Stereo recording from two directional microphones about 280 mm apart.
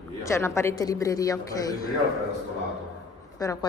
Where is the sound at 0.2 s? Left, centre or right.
Centre.